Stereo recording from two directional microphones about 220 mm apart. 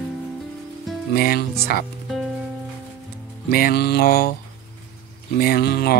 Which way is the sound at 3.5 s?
45° left (ahead or behind).